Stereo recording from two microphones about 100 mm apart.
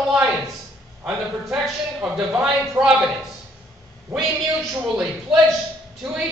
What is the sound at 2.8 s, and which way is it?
Speech, 30° right (ahead or behind).